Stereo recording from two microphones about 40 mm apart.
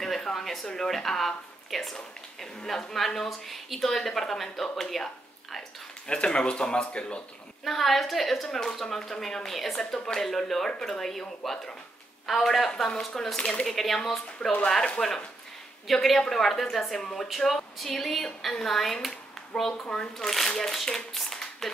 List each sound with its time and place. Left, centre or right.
0.0 s a sound: centre
0.7 s speech: centre
6.0 s speech: left
7.6 s speech: centre
8.5 s speech: centre